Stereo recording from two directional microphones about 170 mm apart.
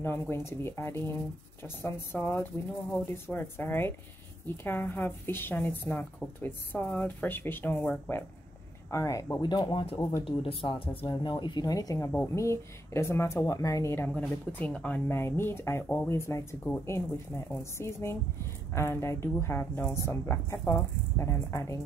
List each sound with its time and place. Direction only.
0.0 s speech: 15° left (ahead or behind)
8.9 s speech: 20° left (ahead or behind)